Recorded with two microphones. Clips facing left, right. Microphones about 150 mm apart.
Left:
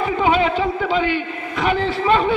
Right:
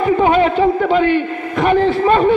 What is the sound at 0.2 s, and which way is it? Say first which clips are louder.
A man's voice: right 2 dB; 50° right (ahead or behind).